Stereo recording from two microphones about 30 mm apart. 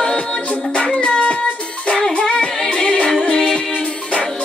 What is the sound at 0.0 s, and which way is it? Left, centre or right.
Music, left.